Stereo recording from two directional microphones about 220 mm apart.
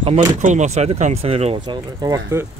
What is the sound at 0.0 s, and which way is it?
Speech, 30° right (ahead or behind).